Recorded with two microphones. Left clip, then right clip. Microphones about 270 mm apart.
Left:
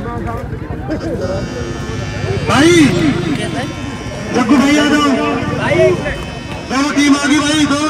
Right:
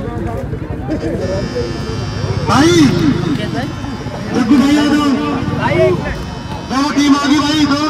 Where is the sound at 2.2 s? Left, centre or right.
Right.